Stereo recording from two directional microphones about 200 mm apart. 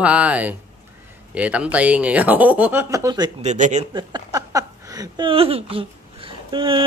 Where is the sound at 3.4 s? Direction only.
35° right (ahead or behind).